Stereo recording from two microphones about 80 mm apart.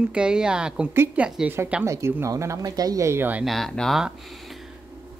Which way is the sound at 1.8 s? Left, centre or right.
Right.